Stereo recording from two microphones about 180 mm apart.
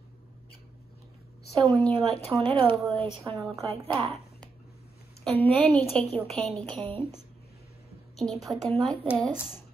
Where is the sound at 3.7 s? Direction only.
35° right (ahead or behind).